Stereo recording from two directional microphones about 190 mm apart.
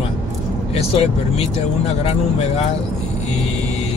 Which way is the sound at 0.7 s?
30° left (ahead or behind).